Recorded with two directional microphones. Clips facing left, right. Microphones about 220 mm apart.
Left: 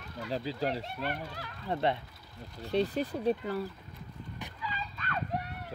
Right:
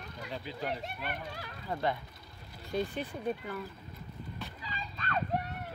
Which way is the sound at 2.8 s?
40° left (ahead or behind).